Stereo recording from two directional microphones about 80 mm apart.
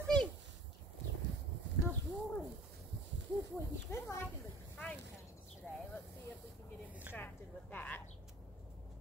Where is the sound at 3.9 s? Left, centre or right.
Left.